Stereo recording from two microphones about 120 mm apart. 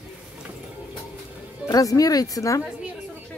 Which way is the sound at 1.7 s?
30° left (ahead or behind).